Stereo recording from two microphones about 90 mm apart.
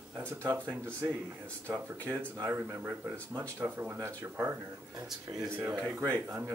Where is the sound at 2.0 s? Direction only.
25° right (ahead or behind).